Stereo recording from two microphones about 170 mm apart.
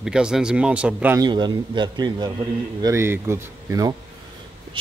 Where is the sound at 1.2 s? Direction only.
25° right (ahead or behind).